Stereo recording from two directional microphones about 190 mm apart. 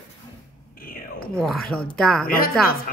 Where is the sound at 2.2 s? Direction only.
50° left (ahead or behind).